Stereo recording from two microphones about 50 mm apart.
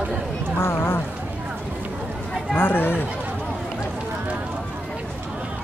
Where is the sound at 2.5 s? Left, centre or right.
Left.